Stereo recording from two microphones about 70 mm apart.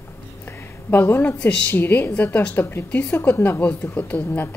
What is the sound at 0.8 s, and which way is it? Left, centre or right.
A woman's voice, left.